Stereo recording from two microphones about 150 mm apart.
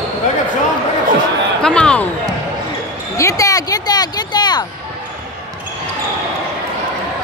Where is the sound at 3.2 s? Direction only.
20° left (ahead or behind).